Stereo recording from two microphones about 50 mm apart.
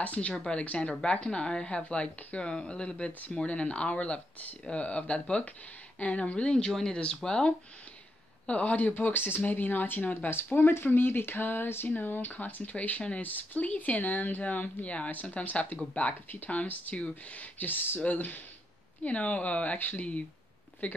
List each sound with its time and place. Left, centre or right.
0.0 s a woman's voice: left
10.3 s speech: left
12.6 s a woman's voice: left